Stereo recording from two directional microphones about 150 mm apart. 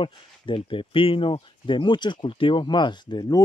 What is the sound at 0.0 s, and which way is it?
Speech, 35° left (ahead or behind).